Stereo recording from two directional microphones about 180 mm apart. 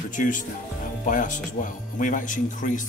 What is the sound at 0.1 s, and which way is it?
Speech, 45° left (ahead or behind).